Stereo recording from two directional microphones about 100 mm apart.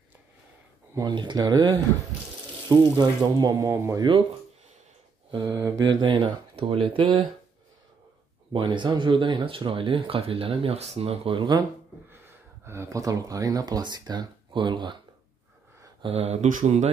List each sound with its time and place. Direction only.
1.0 s speech: 50° right (ahead or behind)
5.3 s speech: 50° right (ahead or behind)
8.5 s speech: 50° right (ahead or behind)
12.6 s speech: 25° right (ahead or behind); by 15.0 s 50° right (ahead or behind)
16.0 s speech: 85° right